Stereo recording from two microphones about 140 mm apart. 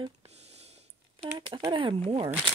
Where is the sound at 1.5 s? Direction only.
40° right (ahead or behind).